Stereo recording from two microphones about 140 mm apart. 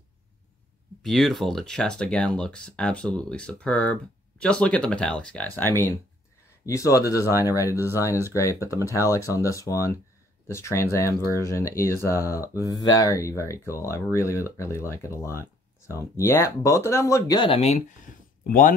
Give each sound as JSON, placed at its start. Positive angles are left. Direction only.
{"t": 1.0, "sound": "speech", "side_deg": 0}
{"t": 17.4, "sound": "speech", "side_deg": 45}